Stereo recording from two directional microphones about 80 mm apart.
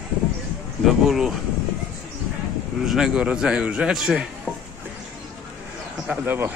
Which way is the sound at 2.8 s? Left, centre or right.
Centre.